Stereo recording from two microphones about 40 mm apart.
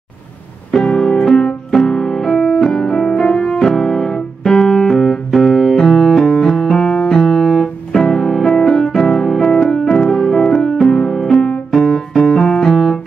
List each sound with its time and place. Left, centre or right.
0.7 s music: left
3.5 s piano: centre
6.7 s piano: left
8.6 s keyboard: centre
9.9 s music: centre
11.2 s piano: centre